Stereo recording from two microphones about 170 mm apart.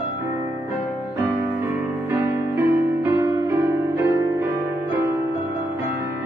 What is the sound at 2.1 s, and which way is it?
Music, 15° right (ahead or behind).